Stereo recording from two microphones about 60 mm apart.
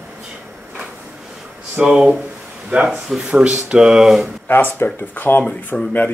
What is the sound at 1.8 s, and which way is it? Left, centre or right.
Speech, centre.